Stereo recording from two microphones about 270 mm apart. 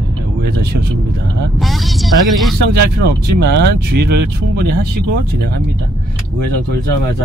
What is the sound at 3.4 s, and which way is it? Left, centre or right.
Speech, right.